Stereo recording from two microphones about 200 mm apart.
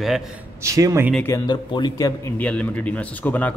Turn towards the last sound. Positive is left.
turn(degrees=5)  # may be behind; listen again after turning